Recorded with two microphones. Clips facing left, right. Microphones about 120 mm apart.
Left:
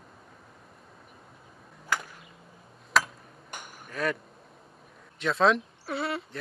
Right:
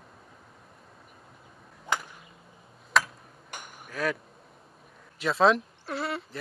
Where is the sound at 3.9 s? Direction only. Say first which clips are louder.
Even; centre (ahead or behind).